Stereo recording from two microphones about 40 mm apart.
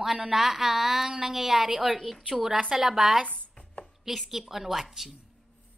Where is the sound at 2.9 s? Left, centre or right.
Centre.